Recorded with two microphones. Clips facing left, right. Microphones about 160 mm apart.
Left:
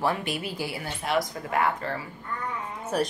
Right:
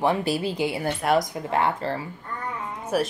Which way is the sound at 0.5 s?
20° right (ahead or behind).